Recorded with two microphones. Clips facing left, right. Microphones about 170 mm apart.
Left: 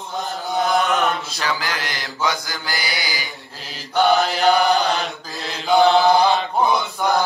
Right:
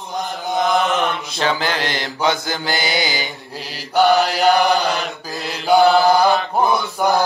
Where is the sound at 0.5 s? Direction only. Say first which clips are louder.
Right 1 dB; 40° left (ahead or behind).